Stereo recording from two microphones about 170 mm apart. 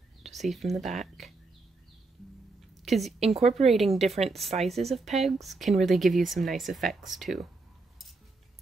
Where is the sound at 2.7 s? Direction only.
Centre (ahead or behind).